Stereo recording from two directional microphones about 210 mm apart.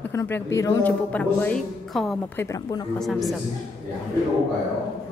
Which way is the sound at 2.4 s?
15° left (ahead or behind).